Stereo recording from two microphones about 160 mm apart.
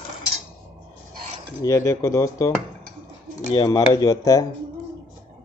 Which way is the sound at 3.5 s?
25° left (ahead or behind).